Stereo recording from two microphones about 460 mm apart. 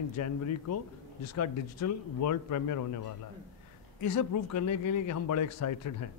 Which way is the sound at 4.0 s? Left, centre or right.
Left.